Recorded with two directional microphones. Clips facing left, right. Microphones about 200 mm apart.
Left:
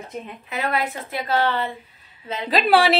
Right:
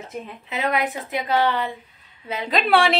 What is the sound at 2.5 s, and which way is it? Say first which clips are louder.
Speech: left 2 dB; 5° left (ahead or behind).